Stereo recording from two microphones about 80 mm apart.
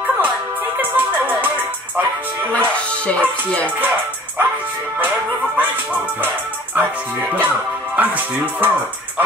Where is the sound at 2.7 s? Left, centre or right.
Centre.